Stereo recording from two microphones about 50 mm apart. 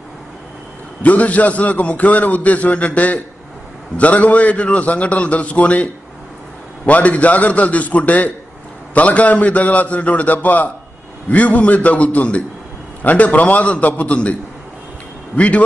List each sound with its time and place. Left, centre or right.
1.0 s a man's voice: left
6.9 s a man's voice: left
15.3 s a man's voice: left